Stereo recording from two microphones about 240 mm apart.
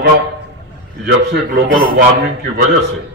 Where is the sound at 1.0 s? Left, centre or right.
Right.